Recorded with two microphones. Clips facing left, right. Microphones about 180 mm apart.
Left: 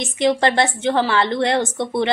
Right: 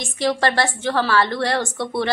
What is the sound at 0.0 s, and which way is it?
A woman's voice, 20° left (ahead or behind).